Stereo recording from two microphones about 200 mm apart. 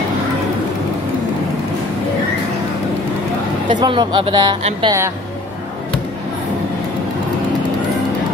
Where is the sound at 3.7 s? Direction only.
20° right (ahead or behind).